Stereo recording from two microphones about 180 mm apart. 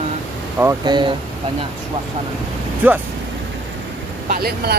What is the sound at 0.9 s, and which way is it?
Speech, 25° right (ahead or behind).